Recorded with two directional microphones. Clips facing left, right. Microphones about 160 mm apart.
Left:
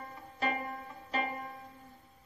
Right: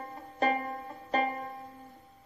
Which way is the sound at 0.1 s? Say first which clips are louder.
Right 6 dB; 40° right (ahead or behind).